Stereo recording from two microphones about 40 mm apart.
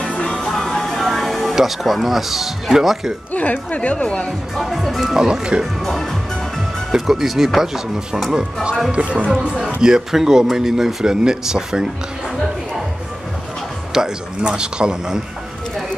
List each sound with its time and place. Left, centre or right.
0.4 s music: centre
1.5 s speech: centre
3.3 s speech: left
4.6 s speech: centre
5.1 s speech: centre
5.8 s speech: centre
6.9 s speech: centre
8.9 s speech: right; by 11.9 s centre
13.9 s speech: centre